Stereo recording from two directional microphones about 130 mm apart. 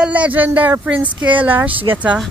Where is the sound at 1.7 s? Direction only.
40° right (ahead or behind).